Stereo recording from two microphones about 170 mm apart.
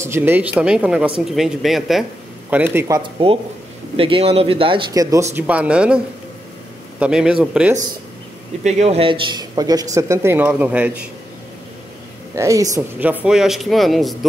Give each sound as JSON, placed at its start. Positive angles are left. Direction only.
{"t": 0.0, "sound": "speech", "side_deg": -15}
{"t": 2.5, "sound": "speech", "side_deg": -10}
{"t": 3.0, "sound": "speech", "side_deg": -30}
{"t": 5.3, "sound": "speech", "side_deg": -5}
{"t": 7.0, "sound": "speech", "side_deg": -5}
{"t": 8.6, "sound": "speech", "side_deg": -40}
{"t": 12.4, "sound": "speech", "side_deg": -20}